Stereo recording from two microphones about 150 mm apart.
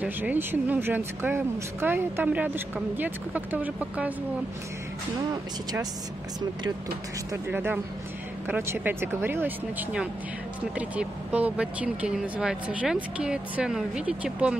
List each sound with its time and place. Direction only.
0.0 s speech: 10° right (ahead or behind)
5.3 s speech: 25° right (ahead or behind)
7.4 s speech: 15° right (ahead or behind)